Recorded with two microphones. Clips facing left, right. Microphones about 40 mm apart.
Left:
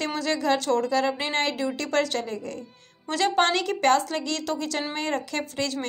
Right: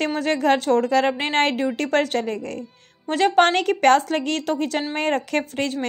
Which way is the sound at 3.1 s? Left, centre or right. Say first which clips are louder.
Right 5 dB; right.